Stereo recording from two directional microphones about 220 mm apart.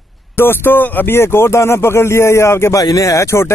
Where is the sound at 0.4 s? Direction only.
10° left (ahead or behind).